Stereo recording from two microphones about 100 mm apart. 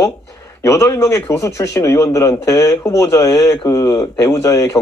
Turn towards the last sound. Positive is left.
turn(degrees=30)  # may be behind; listen again after turning